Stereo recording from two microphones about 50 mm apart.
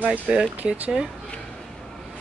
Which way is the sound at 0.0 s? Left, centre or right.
Right.